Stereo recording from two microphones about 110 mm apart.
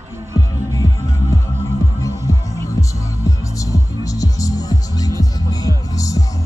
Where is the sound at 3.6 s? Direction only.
30° left (ahead or behind).